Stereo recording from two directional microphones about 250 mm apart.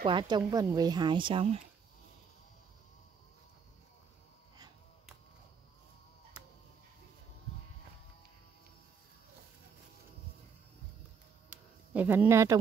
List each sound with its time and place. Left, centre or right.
0.0 s speech: centre
11.9 s speech: centre